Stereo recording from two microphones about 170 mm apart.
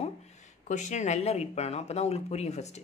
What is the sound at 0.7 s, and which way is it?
Speech, 45° left (ahead or behind).